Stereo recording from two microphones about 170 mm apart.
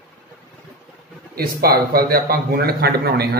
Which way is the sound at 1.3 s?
65° right (ahead or behind).